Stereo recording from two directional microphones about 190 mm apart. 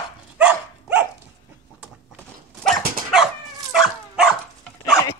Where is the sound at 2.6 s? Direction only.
Centre (ahead or behind).